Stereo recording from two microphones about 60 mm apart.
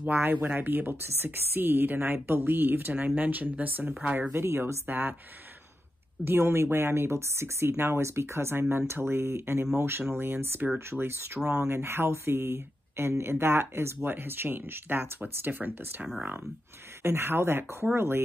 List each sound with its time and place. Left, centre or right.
0.0 s speech: right
4.3 s speech: right
6.2 s speech: right